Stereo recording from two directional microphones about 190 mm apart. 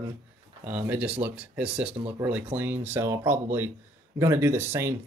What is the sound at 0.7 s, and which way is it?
Speech, 10° right (ahead or behind).